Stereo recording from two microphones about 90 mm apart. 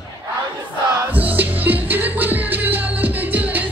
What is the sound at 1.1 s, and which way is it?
Music, 20° right (ahead or behind).